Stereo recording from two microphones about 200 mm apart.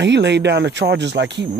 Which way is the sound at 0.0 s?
60° right (ahead or behind).